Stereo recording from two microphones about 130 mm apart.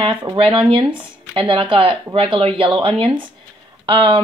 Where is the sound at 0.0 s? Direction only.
40° right (ahead or behind).